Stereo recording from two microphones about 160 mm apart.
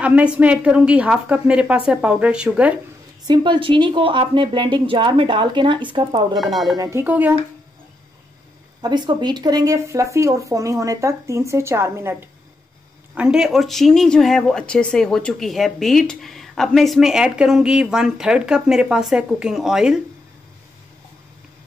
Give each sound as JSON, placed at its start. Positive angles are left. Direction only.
{"t": 0.0, "sound": "a woman's voice", "side_deg": -10}
{"t": 3.3, "sound": "speech", "side_deg": -30}
{"t": 6.3, "sound": "speech", "side_deg": 0}
{"t": 6.8, "sound": "a woman's voice", "side_deg": -15}
{"t": 8.8, "sound": "speech", "side_deg": -25}